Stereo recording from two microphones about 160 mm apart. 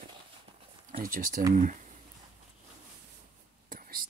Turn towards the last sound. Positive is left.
turn(degrees=-60)  # may be behind; listen again after turning